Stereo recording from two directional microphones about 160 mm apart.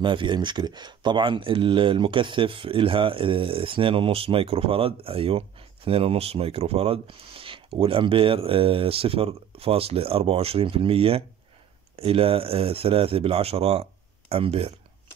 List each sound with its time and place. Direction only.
0.0 s speech: 30° right (ahead or behind)